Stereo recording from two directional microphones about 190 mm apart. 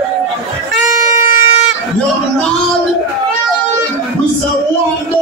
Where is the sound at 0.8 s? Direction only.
40° left (ahead or behind).